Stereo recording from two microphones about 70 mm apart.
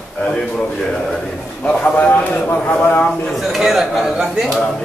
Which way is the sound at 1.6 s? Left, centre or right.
Left.